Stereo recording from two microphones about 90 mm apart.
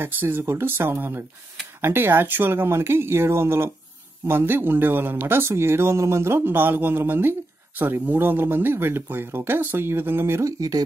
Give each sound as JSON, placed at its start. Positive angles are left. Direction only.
{"t": 0.0, "sound": "speech", "side_deg": -25}